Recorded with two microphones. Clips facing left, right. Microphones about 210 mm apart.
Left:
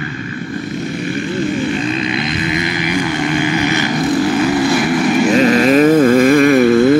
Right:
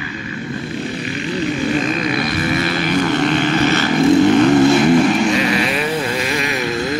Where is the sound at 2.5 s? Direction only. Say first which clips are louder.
Right 1 dB; 15° left (ahead or behind).